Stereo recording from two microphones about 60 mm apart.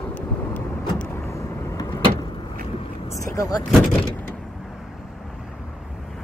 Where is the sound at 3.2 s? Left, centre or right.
Left.